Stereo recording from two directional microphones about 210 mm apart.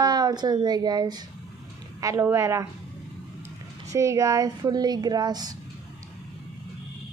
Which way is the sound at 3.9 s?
15° right (ahead or behind).